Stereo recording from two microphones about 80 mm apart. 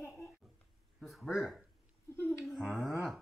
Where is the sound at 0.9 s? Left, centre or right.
Centre.